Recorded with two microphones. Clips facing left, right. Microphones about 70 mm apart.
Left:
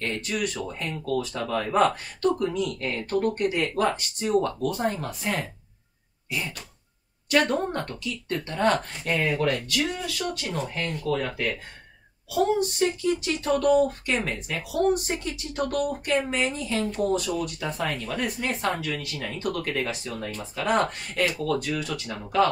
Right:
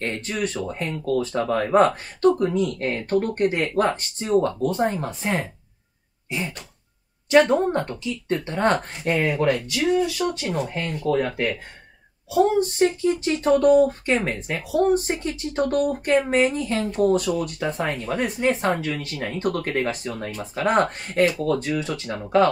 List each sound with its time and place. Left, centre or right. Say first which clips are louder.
0.0 s speech: right 2 dB; right
11.1 s speech: right 6 dB; right
17.4 s speech: right 4 dB; right